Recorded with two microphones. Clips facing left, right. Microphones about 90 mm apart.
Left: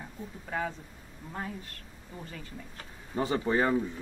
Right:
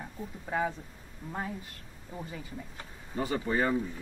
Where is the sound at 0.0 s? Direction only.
10° right (ahead or behind).